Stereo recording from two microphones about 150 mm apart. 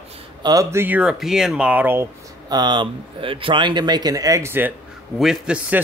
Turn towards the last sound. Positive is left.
turn(degrees=-5)  # may be behind; listen again after turning